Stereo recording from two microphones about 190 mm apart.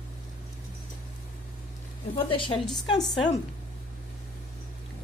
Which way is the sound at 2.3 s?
25° left (ahead or behind).